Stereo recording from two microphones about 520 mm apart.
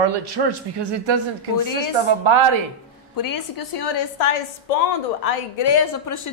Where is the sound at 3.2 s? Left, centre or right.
Left.